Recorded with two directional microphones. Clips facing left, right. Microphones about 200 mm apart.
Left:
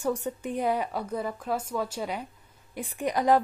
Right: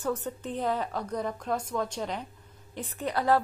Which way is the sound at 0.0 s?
10° left (ahead or behind).